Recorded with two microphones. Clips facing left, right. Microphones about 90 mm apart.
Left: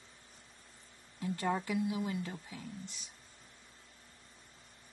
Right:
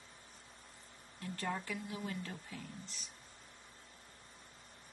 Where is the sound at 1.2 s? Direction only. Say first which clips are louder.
Left 6 dB; 15° left (ahead or behind).